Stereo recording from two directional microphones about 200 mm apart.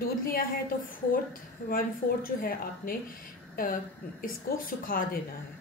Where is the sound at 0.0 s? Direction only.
45° left (ahead or behind).